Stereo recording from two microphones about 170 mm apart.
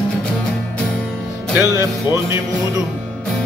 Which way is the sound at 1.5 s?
15° right (ahead or behind).